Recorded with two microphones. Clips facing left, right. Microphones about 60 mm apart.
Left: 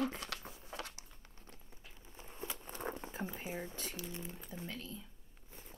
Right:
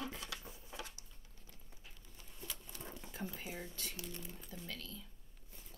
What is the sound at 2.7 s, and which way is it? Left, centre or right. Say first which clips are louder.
Speech: left 8 dB; left.